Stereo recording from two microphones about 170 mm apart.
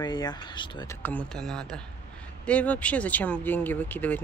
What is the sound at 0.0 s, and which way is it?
Speech, 25° left (ahead or behind).